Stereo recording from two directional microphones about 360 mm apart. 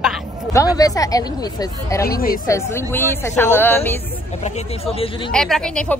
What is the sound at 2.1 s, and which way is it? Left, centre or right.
Speech, left.